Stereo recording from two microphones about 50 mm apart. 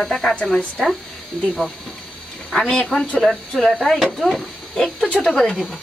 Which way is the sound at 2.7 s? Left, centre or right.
Centre.